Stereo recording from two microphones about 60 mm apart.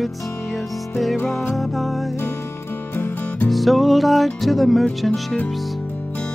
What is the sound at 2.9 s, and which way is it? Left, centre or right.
Music, left.